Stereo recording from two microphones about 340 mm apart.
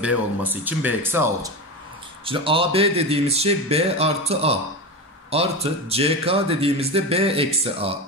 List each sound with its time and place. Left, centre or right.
0.4 s speech: centre